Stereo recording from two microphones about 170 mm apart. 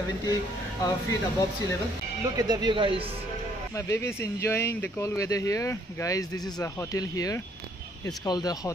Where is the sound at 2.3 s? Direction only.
25° right (ahead or behind).